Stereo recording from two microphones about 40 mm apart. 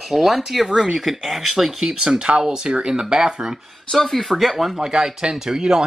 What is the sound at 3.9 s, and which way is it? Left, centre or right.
Speech, centre.